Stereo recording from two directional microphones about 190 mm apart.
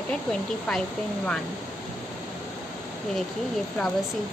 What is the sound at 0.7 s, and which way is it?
Speech, 5° left (ahead or behind).